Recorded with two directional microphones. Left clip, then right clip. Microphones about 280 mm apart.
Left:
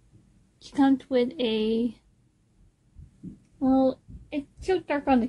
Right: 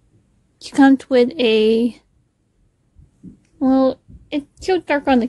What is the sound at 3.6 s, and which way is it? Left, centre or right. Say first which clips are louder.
A woman's voice: right 7 dB; right.